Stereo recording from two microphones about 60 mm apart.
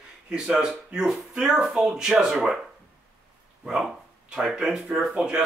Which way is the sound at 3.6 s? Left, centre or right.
Centre.